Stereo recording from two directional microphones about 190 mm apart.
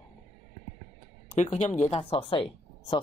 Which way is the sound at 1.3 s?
40° left (ahead or behind).